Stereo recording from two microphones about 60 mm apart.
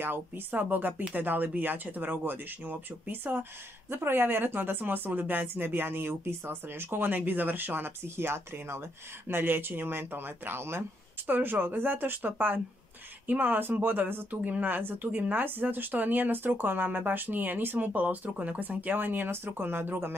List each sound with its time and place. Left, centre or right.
0.0 s speech: right